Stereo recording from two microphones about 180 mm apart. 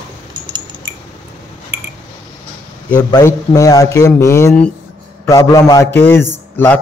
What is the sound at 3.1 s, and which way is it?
A man's voice, 20° left (ahead or behind).